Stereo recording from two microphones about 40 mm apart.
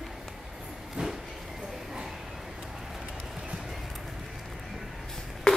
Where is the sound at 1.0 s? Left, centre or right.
Right.